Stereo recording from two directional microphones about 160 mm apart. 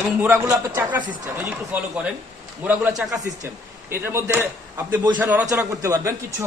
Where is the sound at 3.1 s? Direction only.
20° right (ahead or behind).